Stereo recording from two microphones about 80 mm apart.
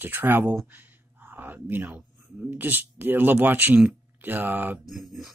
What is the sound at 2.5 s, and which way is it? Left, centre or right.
Speech, right.